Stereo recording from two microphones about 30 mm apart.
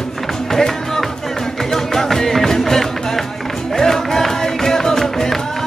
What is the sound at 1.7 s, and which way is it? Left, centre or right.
Music, centre.